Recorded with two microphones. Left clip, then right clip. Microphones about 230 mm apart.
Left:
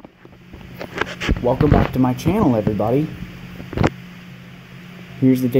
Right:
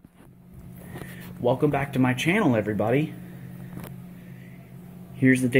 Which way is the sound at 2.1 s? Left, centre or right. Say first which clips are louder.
Left 3 dB; centre.